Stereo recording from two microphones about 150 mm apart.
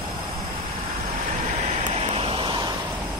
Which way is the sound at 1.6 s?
50° right (ahead or behind).